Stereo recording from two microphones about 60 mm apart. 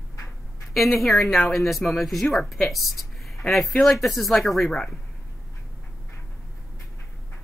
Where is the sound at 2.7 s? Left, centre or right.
Centre.